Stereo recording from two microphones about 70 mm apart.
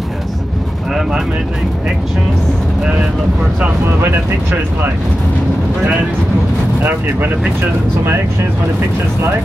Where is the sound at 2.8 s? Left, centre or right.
Centre.